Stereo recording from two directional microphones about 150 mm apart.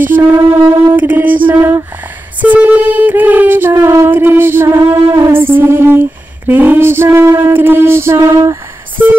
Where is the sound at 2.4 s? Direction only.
10° right (ahead or behind).